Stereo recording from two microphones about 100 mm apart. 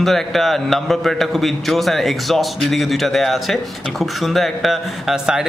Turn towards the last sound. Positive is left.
turn(degrees=-5)  # may be behind; listen again after turning